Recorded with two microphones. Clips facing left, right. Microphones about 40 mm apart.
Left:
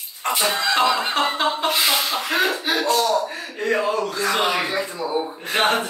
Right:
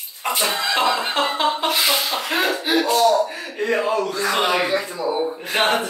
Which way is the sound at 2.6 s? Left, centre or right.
Centre.